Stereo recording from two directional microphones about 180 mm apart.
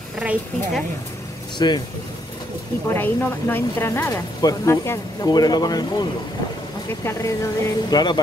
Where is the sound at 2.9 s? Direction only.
10° left (ahead or behind).